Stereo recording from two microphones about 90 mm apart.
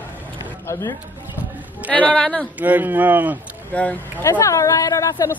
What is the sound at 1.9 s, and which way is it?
Speech, 15° left (ahead or behind).